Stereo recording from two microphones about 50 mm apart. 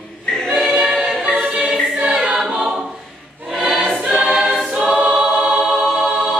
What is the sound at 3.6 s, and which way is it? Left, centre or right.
Choir, centre.